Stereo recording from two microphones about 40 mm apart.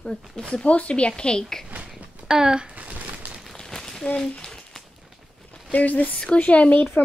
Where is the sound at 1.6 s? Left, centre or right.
Right.